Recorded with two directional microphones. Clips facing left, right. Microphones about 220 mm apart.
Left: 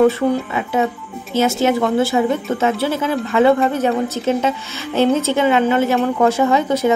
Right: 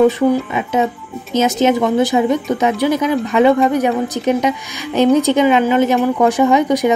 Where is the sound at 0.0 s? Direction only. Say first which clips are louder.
Right 2 dB; 15° right (ahead or behind).